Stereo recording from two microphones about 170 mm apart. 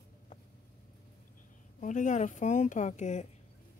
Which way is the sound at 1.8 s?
50° left (ahead or behind).